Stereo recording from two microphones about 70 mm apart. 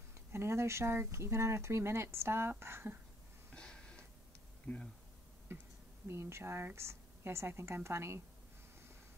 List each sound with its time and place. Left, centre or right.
0.3 s speech: right
3.5 s a sound: centre
6.0 s speech: right